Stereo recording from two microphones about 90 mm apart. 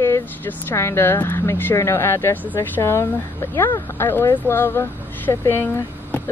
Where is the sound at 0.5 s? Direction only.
25° left (ahead or behind).